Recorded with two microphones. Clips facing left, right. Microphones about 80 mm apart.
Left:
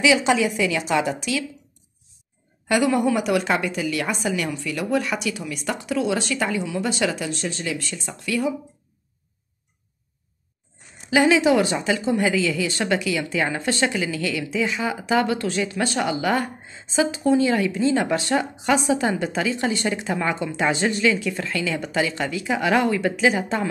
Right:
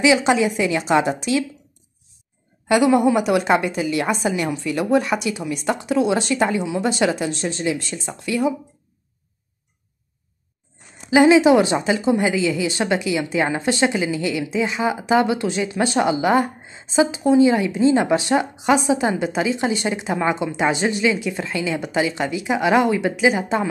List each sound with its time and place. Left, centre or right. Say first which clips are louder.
0.0 s a woman's voice: right 2 dB; right
2.7 s a woman's voice: right 4 dB; right
11.1 s a woman's voice: right 5 dB; right